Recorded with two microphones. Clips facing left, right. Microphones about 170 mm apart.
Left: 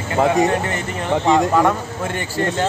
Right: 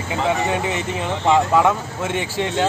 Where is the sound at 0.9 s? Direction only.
10° right (ahead or behind).